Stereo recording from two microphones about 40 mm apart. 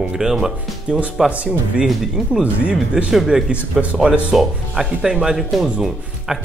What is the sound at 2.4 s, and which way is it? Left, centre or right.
Speech, right.